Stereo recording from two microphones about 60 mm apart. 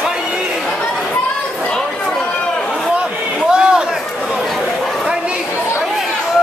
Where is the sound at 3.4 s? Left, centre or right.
Centre.